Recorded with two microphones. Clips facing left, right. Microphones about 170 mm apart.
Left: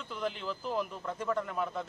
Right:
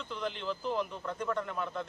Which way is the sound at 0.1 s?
5° left (ahead or behind).